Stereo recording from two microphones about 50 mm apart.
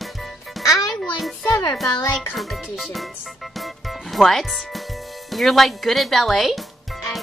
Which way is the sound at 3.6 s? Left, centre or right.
Centre.